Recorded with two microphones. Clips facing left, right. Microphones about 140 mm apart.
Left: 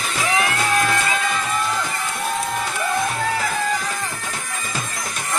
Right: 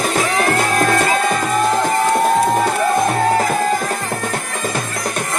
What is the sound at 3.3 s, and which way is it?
Music, 45° right (ahead or behind).